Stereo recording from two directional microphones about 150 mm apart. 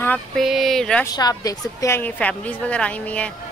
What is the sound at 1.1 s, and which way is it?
A woman's voice, 25° left (ahead or behind).